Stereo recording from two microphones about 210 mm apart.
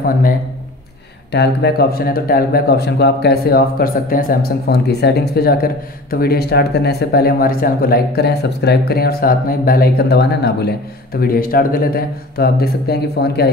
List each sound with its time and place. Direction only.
1.3 s a man's voice: 50° left (ahead or behind)